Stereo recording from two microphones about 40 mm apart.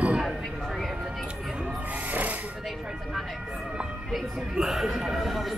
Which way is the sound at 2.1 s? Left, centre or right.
Right.